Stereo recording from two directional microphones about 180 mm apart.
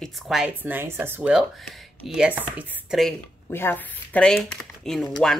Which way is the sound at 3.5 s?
10° left (ahead or behind).